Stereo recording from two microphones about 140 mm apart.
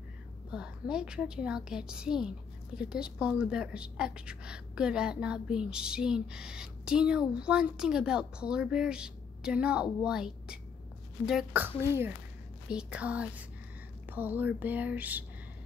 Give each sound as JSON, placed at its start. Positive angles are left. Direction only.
{"t": 0.5, "sound": "a woman's voice", "side_deg": -5}
{"t": 11.6, "sound": "speech", "side_deg": -15}